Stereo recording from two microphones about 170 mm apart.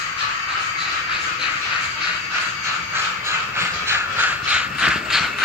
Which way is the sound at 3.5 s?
15° right (ahead or behind).